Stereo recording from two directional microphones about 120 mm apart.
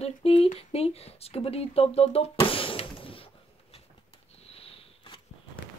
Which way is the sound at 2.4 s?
50° left (ahead or behind).